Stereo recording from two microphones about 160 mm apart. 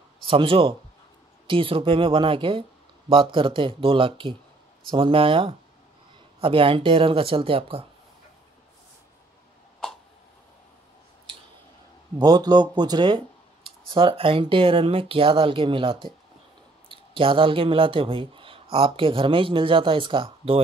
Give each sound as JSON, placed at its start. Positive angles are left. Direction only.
{"t": 0.2, "sound": "speech", "side_deg": -35}
{"t": 12.2, "sound": "speech", "side_deg": -25}